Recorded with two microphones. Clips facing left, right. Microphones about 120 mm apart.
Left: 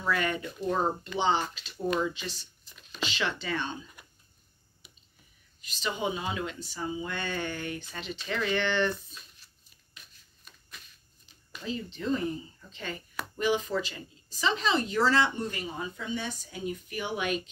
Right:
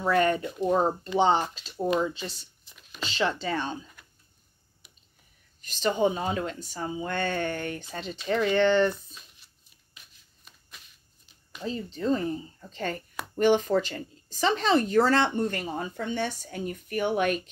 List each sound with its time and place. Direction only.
0.0 s speech: 40° right (ahead or behind)
1.6 s speech: 30° right (ahead or behind)
2.7 s a sound: 5° right (ahead or behind)
3.1 s speech: 35° right (ahead or behind)
4.8 s a sound: centre (ahead or behind)
5.6 s speech: 45° right (ahead or behind)
7.1 s speech: 50° right (ahead or behind)
11.6 s speech: 40° right (ahead or behind)